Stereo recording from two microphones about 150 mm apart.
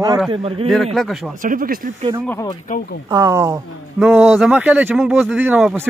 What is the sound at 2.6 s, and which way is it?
Speech, 60° left (ahead or behind).